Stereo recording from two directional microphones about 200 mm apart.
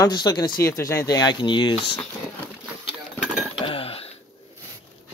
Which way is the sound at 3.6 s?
25° left (ahead or behind).